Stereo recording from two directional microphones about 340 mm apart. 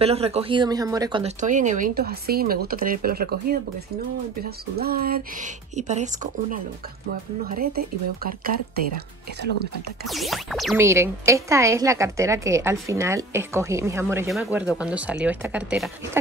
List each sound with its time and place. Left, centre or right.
0.0 s speech: centre
10.0 s speech: centre